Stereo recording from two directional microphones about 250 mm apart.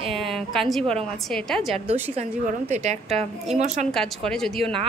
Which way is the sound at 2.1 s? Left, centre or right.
Right.